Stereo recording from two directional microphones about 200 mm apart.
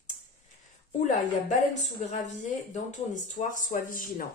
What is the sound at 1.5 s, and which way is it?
Speech, 40° left (ahead or behind).